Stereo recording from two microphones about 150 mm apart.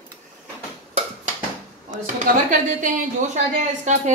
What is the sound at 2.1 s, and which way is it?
A woman's voice, 60° right (ahead or behind).